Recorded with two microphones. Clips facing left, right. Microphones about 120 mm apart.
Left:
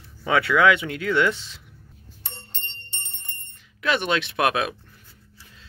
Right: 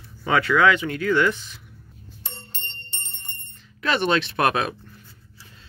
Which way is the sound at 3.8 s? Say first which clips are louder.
Right 2 dB; 5° left (ahead or behind).